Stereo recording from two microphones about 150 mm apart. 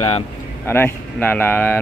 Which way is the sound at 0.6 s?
15° left (ahead or behind).